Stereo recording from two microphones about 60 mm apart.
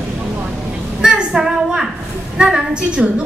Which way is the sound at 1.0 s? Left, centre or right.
Centre.